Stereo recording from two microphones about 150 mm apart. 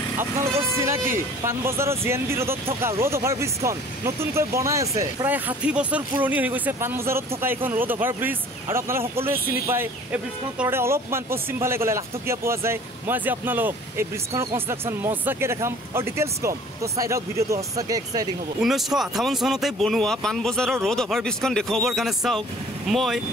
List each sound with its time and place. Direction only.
0.7 s speech: 15° right (ahead or behind)
18.6 s speech: centre (ahead or behind)